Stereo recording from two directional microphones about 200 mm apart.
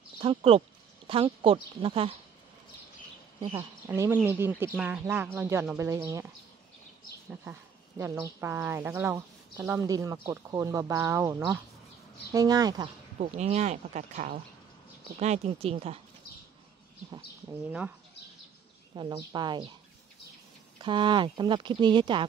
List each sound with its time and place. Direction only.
0.2 s speech: 30° right (ahead or behind)
3.5 s speech: 15° right (ahead or behind)
8.0 s speech: 10° right (ahead or behind)
13.2 s speech: 35° right (ahead or behind)
17.5 s speech: 10° right (ahead or behind)
18.9 s speech: 20° right (ahead or behind)
20.8 s speech: 25° right (ahead or behind)